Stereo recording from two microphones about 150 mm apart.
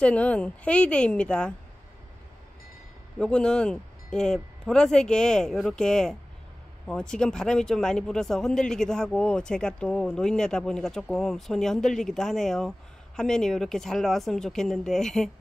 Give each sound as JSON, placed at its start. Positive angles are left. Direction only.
{"t": 0.0, "sound": "speech", "side_deg": 10}
{"t": 3.2, "sound": "speech", "side_deg": 5}